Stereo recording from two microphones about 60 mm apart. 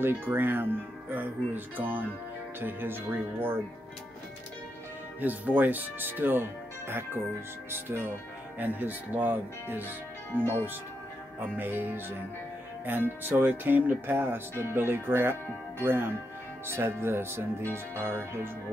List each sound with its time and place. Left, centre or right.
0.0 s speech: right
5.2 s speech: right
8.5 s speech: right
11.5 s speech: right